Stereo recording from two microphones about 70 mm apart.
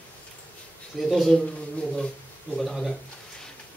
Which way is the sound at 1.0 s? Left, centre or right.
Centre.